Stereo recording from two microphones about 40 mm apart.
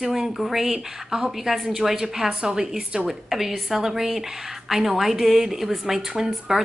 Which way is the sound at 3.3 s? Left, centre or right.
Centre.